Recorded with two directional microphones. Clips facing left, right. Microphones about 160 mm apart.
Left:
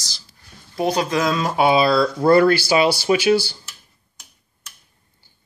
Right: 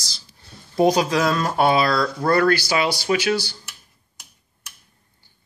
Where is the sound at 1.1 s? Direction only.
Centre (ahead or behind).